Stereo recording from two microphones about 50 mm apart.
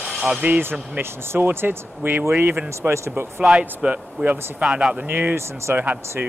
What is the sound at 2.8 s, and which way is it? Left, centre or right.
Speech, right.